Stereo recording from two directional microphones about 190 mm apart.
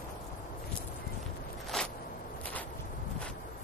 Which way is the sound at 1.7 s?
5° left (ahead or behind).